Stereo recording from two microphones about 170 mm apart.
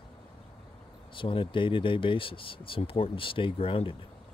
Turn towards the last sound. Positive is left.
turn(degrees=35)  # may be behind; listen again after turning